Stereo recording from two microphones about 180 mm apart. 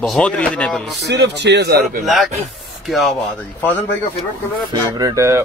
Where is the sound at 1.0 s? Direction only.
70° right (ahead or behind).